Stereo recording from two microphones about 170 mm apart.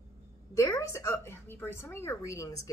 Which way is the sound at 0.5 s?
20° left (ahead or behind).